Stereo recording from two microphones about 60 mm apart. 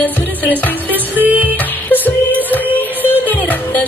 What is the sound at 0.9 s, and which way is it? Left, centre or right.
Music, right.